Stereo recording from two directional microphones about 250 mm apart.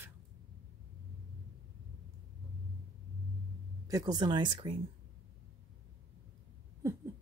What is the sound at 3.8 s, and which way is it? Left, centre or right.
Speech, centre.